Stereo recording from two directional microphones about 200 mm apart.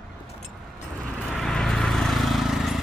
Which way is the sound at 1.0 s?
Centre (ahead or behind).